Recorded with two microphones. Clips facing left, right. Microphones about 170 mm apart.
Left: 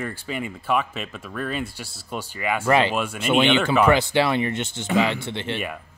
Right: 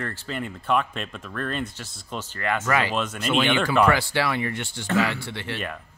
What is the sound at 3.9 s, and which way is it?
Speech, 20° left (ahead or behind).